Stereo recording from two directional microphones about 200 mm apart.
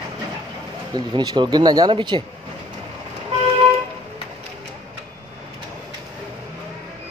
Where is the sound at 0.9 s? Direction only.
20° right (ahead or behind).